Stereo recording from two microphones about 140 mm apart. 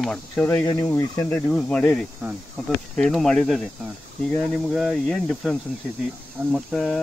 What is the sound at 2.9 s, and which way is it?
Cricket, 5° left (ahead or behind).